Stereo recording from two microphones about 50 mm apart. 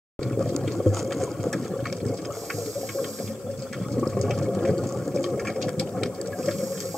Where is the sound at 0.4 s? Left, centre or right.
Centre.